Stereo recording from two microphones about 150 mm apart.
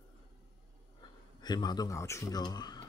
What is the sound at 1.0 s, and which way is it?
Speech, 30° left (ahead or behind).